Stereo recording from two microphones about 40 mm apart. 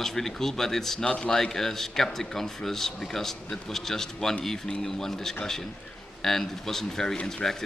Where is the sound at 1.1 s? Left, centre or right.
Left.